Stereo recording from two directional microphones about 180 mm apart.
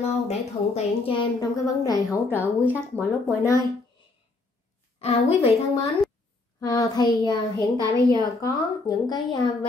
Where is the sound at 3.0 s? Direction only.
15° left (ahead or behind).